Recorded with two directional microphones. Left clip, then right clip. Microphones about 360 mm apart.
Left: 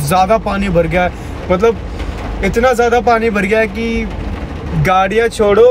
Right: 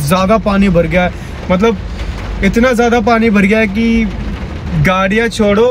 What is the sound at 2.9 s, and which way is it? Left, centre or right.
Speech, centre.